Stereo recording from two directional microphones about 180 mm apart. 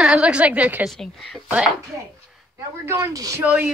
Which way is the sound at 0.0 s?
5° right (ahead or behind).